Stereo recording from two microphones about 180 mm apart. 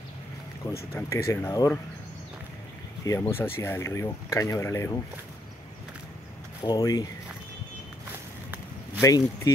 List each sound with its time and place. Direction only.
0.9 s speech: 15° left (ahead or behind)
3.1 s speech: 15° left (ahead or behind)
6.6 s speech: 20° left (ahead or behind)
9.0 s speech: 20° left (ahead or behind)